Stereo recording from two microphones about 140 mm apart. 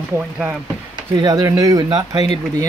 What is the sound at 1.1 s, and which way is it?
Speech, 30° right (ahead or behind).